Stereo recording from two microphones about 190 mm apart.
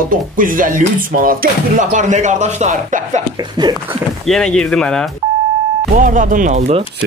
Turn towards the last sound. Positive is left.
turn(degrees=-35)  # may be behind; listen again after turning